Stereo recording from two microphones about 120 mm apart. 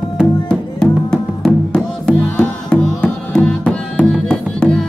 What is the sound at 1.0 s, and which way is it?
Music, 5° left (ahead or behind).